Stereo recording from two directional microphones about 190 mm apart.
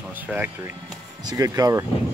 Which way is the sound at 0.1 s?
10° right (ahead or behind).